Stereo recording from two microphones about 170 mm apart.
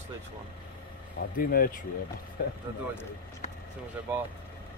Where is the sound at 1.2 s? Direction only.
65° left (ahead or behind).